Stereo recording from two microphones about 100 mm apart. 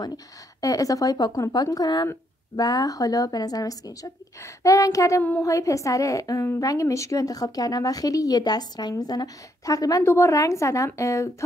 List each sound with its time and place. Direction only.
0.6 s a woman's voice: 35° left (ahead or behind)